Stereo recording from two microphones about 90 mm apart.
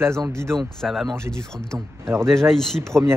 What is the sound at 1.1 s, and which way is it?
Speech, 30° right (ahead or behind).